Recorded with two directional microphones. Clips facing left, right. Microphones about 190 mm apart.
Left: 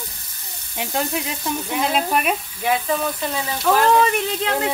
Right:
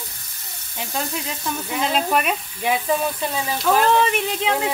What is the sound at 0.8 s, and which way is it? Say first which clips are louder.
Speech: left 4 dB; 10° left (ahead or behind).